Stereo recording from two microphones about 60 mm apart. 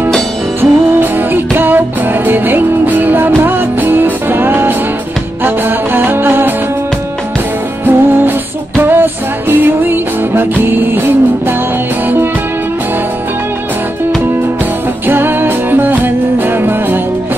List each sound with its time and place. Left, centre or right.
0.6 s music: right
7.8 s music: right
15.0 s music: right